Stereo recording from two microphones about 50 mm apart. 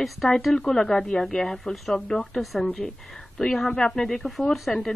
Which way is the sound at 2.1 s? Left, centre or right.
Centre.